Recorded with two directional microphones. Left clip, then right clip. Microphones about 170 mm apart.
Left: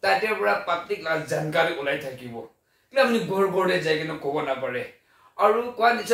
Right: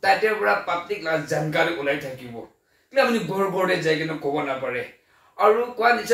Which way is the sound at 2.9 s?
15° left (ahead or behind).